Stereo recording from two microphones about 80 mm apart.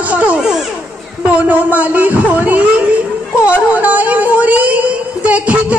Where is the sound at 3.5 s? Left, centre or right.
Centre.